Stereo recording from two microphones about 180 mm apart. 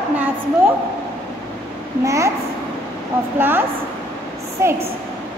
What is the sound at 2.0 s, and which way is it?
Speech, 15° right (ahead or behind).